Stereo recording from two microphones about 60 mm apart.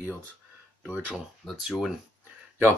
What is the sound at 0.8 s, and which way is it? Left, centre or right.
Speech, right.